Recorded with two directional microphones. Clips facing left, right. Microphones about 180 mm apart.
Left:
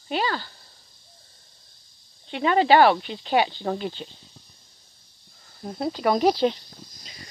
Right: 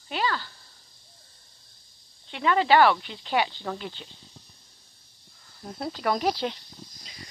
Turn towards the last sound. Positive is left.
turn(degrees=25)  # may be behind; listen again after turning